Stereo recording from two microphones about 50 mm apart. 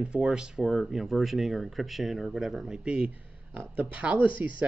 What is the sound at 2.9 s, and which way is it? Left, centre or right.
Speech, centre.